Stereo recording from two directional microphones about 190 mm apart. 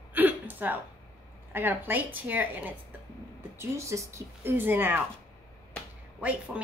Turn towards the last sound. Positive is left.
turn(degrees=-5)  # may be behind; listen again after turning